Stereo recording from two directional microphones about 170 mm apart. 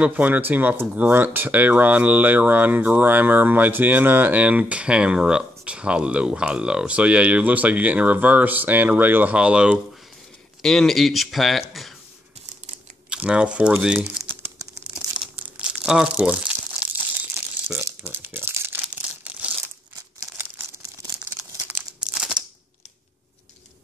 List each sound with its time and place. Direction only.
0.0 s speech: 10° right (ahead or behind)
13.1 s speech: 5° right (ahead or behind)
15.0 s crumpling: 10° right (ahead or behind)